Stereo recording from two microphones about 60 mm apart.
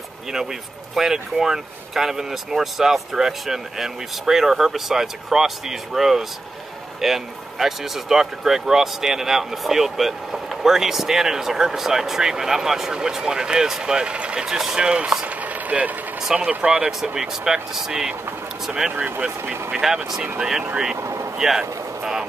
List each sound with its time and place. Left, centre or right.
0.3 s speech: centre
15.2 s a sound: right
16.2 s speech: centre
19.0 s speech: right
19.7 s speech: centre
21.0 s vehicle: right
21.4 s speech: centre